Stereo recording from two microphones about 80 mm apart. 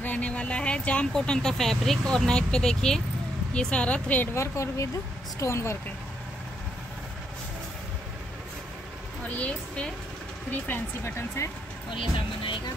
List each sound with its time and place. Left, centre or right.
0.0 s speech: centre
4.3 s speech: left
9.3 s a woman's voice: centre; by 11.5 s left
11.9 s speech: left